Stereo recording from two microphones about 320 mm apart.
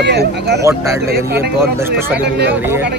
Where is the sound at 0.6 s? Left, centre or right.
Centre.